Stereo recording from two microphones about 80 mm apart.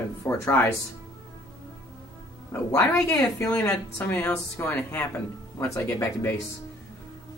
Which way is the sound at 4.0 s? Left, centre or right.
Left.